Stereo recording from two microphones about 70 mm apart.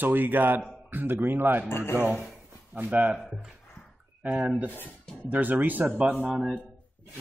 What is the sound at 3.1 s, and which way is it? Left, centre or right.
Speech, centre.